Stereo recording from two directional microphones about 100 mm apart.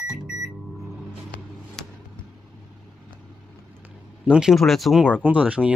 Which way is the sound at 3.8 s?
15° right (ahead or behind).